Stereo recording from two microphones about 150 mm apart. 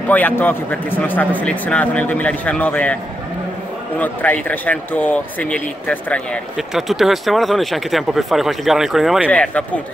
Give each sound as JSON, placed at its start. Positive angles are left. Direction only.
{"t": 0.1, "sound": "a man's voice", "side_deg": 10}
{"t": 4.0, "sound": "a man's voice", "side_deg": 10}
{"t": 9.3, "sound": "a man's voice", "side_deg": 10}